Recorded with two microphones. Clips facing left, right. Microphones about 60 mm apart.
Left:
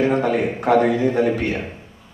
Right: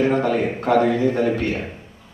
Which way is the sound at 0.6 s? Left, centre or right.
Centre.